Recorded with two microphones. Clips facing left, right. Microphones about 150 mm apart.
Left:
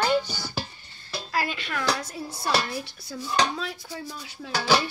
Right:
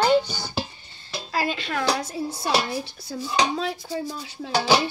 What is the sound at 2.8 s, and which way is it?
Dishes, 30° right (ahead or behind).